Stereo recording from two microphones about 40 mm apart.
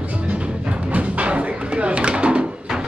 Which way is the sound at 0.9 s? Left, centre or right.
Right.